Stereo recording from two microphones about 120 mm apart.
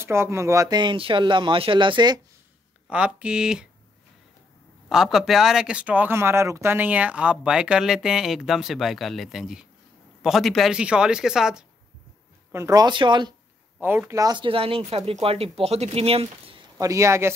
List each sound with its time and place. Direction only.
0.0 s speech: 20° right (ahead or behind); by 2.2 s 35° right (ahead or behind)
2.9 s speech: 10° right (ahead or behind)
4.8 s speech: 5° right (ahead or behind)
12.5 s speech: 30° right (ahead or behind)
13.7 s speech: 15° right (ahead or behind)
14.1 s speech: 30° right (ahead or behind)
14.4 s speech: 50° right (ahead or behind)
16.7 s speech: 25° right (ahead or behind)